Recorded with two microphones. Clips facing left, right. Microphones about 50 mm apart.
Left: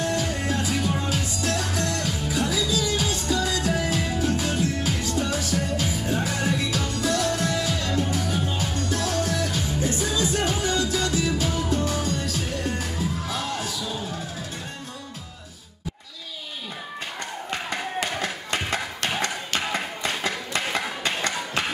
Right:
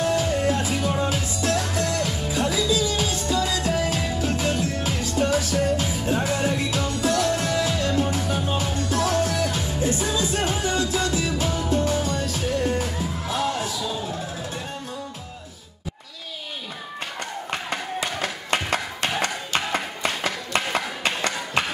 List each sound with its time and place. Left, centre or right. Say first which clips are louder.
0.0 s music: right 4 dB; right
18.2 s music: right 2 dB; right
19.7 s a sound: right 1 dB; right